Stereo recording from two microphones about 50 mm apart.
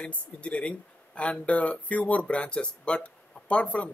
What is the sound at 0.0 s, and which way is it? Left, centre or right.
Speech, left.